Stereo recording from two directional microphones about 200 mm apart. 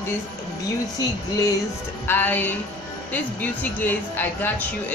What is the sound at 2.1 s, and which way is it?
Speech, 10° left (ahead or behind).